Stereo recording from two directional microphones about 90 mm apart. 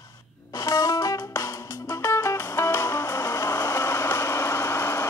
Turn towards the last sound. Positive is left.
turn(degrees=30)  # may be behind; listen again after turning